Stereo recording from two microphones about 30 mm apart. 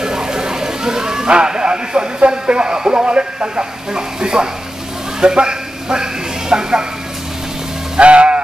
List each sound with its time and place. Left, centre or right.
0.0 s vehicle: right
1.3 s speech: right
8.0 s speech: right